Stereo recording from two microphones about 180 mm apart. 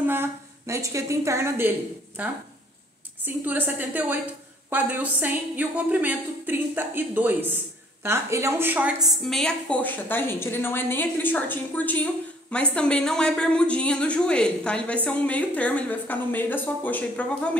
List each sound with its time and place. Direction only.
0.0 s a woman's voice: 10° right (ahead or behind); by 17.5 s 5° left (ahead or behind)